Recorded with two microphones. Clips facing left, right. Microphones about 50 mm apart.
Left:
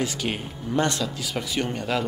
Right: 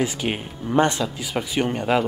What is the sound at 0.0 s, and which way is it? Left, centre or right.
Speech, centre.